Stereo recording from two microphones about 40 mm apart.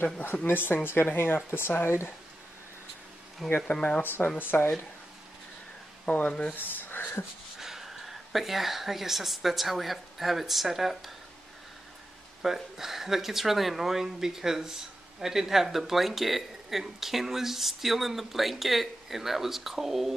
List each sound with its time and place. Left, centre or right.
0.0 s speech: left
3.4 s speech: centre
4.0 s speech: left
6.0 s speech: left
6.5 s a sound: left
7.5 s speech: centre
12.4 s speech: centre